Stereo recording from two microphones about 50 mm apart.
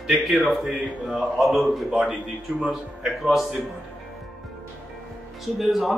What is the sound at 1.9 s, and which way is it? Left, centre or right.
Speech, centre.